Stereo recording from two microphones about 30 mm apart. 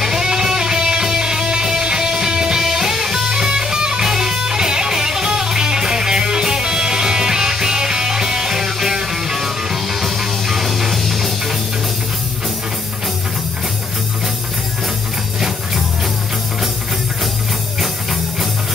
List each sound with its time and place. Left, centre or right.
0.0 s music: centre
2.6 s music: centre
17.7 s music: centre